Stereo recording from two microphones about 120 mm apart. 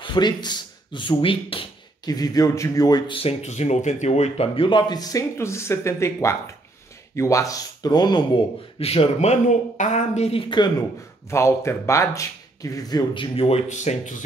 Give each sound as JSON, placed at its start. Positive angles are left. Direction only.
{"t": 0.0, "sound": "speech", "side_deg": 40}
{"t": 2.0, "sound": "speech", "side_deg": 30}
{"t": 3.1, "sound": "speech", "side_deg": 55}
{"t": 4.6, "sound": "speech", "side_deg": 40}
{"t": 8.7, "sound": "speech", "side_deg": 55}
{"t": 11.2, "sound": "speech", "side_deg": 25}
{"t": 13.7, "sound": "speech", "side_deg": 80}